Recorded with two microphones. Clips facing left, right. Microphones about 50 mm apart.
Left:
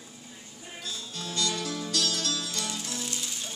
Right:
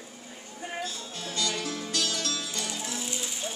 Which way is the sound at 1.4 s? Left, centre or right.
Right.